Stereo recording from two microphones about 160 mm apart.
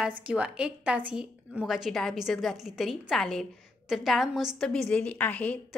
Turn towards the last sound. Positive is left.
turn(degrees=10)  # may be behind; listen again after turning